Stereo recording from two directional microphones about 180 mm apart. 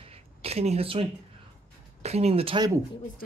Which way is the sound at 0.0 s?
35° right (ahead or behind).